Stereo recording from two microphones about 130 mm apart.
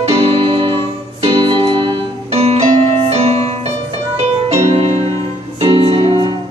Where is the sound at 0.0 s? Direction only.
45° right (ahead or behind).